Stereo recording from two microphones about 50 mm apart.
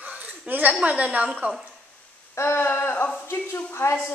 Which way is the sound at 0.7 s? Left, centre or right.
Right.